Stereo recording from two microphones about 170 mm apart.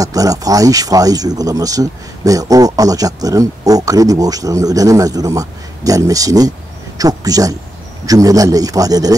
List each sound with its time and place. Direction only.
0.0 s speech: 20° right (ahead or behind)